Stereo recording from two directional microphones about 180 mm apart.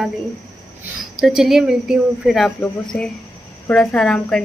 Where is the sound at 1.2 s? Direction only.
Centre (ahead or behind).